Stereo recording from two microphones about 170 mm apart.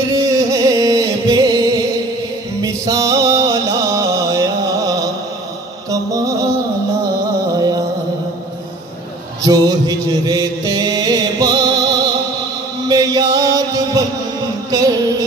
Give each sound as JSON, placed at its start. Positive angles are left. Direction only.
{"t": 0.1, "sound": "music", "side_deg": -20}
{"t": 7.5, "sound": "music", "side_deg": -20}
{"t": 9.4, "sound": "music", "side_deg": -20}